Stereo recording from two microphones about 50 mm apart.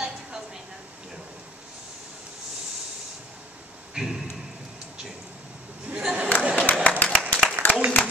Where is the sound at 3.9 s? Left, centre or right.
Centre.